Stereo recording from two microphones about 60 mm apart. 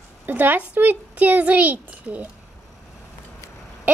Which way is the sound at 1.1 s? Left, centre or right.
Right.